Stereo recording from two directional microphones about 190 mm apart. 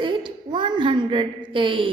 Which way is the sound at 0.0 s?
25° right (ahead or behind).